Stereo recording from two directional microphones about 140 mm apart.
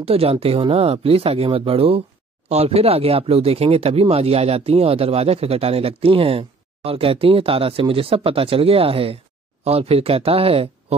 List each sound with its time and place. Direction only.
0.0 s speech: 45° right (ahead or behind)